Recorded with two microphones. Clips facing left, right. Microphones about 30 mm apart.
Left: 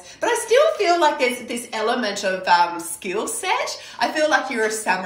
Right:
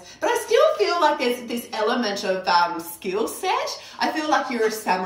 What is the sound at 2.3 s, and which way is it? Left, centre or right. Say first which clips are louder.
Speech: left 1 dB; left.